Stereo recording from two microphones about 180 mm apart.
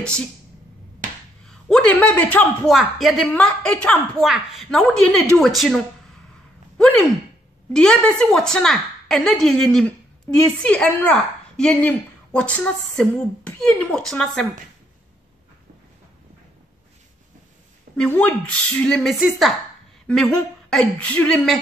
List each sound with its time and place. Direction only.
0.0 s speech: 5° left (ahead or behind)
1.4 s a woman's voice: 5° left (ahead or behind)
7.7 s a woman's voice: 5° left (ahead or behind)
17.9 s a woman's voice: 5° left (ahead or behind)